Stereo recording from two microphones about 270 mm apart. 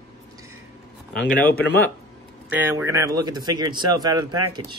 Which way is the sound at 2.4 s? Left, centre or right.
Centre.